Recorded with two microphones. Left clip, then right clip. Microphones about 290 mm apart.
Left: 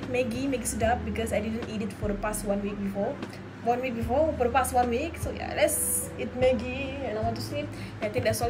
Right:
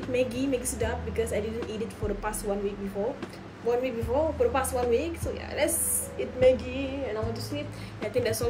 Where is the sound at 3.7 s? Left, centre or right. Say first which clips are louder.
Even; centre.